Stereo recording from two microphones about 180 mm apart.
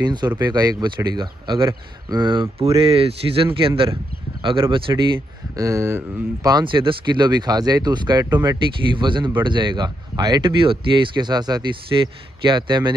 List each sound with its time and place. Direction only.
0.0 s speech: 25° right (ahead or behind)
5.6 s speech: 15° right (ahead or behind)